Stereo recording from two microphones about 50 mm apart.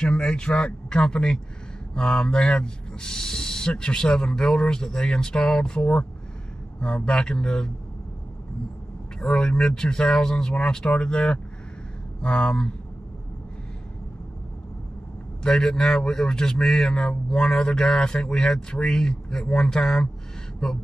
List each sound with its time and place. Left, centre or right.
0.0 s speech: centre
7.1 s speech: centre
9.2 s speech: centre
15.4 s speech: centre